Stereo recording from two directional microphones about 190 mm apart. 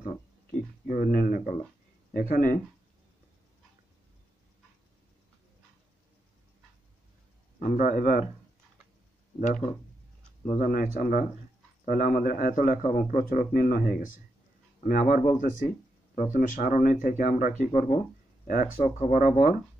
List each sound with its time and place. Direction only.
0.8 s speech: 45° left (ahead or behind)
7.5 s speech: 40° left (ahead or behind)
10.6 s speech: 45° left (ahead or behind)